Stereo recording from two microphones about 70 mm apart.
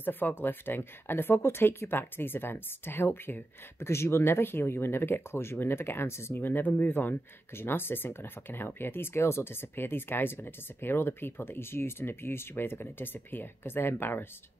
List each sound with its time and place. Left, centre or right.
0.0 s speech: left